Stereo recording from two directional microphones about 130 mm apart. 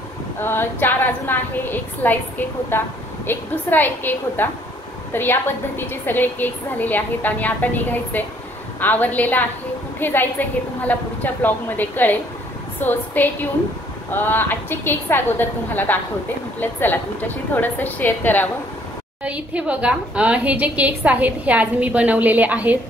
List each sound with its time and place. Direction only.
0.4 s a woman's voice: 15° left (ahead or behind)
19.2 s a woman's voice: 10° right (ahead or behind)